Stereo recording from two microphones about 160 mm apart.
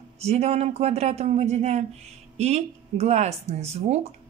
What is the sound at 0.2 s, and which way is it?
A woman's voice, 40° right (ahead or behind).